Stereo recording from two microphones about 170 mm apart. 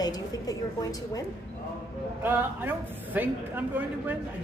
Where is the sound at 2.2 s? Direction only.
10° right (ahead or behind).